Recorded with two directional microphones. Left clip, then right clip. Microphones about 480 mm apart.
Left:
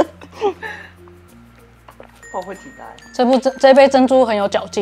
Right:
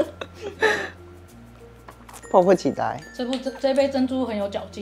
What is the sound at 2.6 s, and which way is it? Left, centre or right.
Speech, right.